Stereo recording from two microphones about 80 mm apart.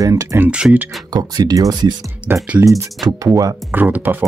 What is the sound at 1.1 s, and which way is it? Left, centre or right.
Speech, right.